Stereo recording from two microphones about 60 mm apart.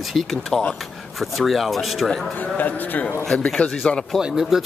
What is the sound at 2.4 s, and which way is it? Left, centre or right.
Speech, left.